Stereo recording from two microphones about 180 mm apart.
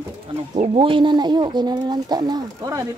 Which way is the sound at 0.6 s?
30° right (ahead or behind).